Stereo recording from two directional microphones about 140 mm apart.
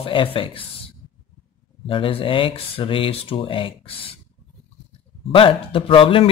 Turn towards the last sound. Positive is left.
turn(degrees=40)  # may be behind; listen again after turning